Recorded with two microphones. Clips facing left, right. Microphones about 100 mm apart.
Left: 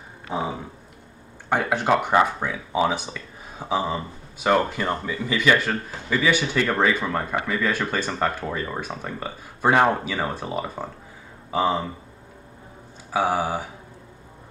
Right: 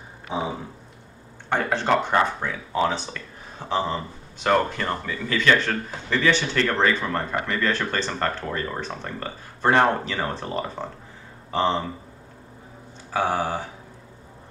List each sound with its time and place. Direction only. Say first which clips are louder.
0.3 s speech: even; centre (ahead or behind)
1.5 s speech: left 1 dB; 10° left (ahead or behind)
13.1 s speech: left 1 dB; 10° left (ahead or behind)